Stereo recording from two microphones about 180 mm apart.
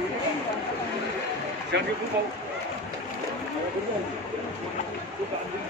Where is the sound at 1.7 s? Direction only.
70° right (ahead or behind).